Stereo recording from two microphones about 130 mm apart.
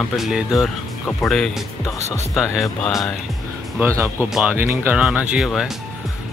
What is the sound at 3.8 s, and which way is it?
Speech, 20° right (ahead or behind).